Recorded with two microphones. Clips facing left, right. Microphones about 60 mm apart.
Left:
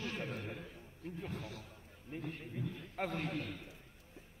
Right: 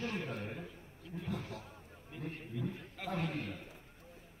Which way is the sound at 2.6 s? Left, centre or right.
Right.